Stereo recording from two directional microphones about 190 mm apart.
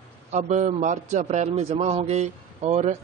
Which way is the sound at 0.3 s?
40° right (ahead or behind).